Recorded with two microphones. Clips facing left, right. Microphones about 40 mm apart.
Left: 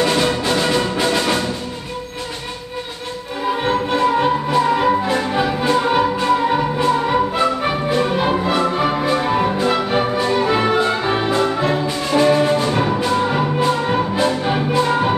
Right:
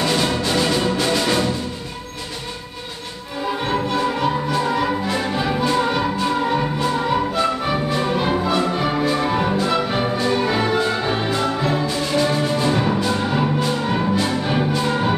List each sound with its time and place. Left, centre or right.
0.0 s music: centre
3.6 s music: left